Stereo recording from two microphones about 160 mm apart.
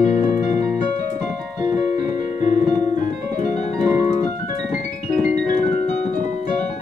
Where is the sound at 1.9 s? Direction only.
45° left (ahead or behind).